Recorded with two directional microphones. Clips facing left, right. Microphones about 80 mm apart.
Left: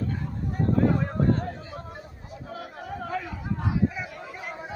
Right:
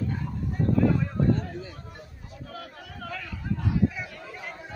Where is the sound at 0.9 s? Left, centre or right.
Left.